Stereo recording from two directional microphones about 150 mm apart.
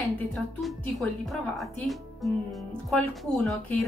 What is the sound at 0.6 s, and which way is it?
A woman's voice, centre (ahead or behind).